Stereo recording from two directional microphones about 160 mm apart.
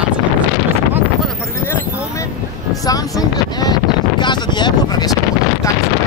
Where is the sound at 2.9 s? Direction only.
25° left (ahead or behind).